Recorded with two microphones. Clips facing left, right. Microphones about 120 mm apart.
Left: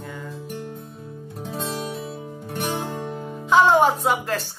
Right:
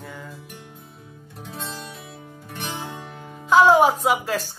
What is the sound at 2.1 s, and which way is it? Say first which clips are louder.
Music: left 7 dB; 25° left (ahead or behind).